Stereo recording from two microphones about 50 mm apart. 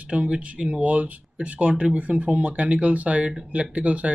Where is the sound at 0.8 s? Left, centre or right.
Right.